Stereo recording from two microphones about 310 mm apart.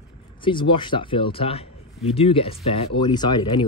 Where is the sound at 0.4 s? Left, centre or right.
Centre.